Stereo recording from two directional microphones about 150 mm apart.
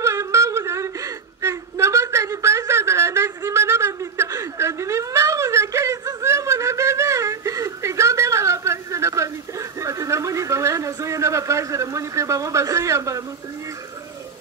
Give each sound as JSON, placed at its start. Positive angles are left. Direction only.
{"t": 0.0, "sound": "whimper", "side_deg": -20}